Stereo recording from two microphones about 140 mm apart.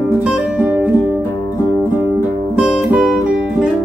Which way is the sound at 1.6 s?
20° left (ahead or behind).